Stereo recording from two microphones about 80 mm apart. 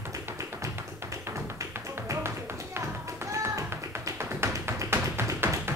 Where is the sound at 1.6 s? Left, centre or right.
Right.